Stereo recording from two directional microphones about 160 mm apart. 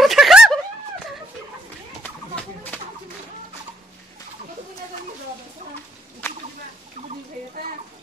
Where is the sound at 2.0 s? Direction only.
10° left (ahead or behind).